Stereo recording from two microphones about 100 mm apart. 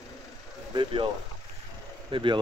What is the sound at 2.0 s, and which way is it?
Speech, 55° right (ahead or behind).